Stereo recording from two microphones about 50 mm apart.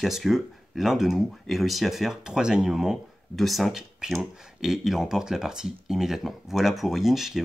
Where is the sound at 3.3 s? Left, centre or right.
Centre.